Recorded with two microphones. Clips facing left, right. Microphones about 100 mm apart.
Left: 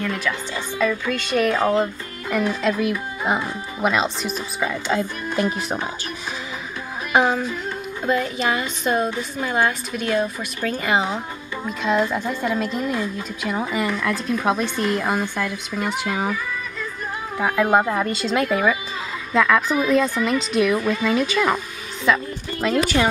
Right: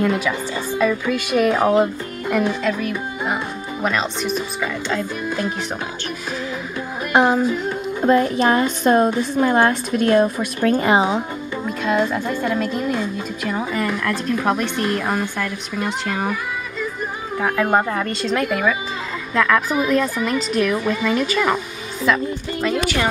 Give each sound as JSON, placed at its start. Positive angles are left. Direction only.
{"t": 0.0, "sound": "speech", "side_deg": -15}
{"t": 2.6, "sound": "a woman's voice", "side_deg": 5}
{"t": 4.6, "sound": "speech", "side_deg": 15}
{"t": 7.1, "sound": "music", "side_deg": 0}
{"t": 8.1, "sound": "a woman's voice", "side_deg": -40}
{"t": 11.0, "sound": "speech", "side_deg": -25}
{"t": 11.6, "sound": "a woman's voice", "side_deg": 0}
{"t": 17.4, "sound": "a woman's voice", "side_deg": 5}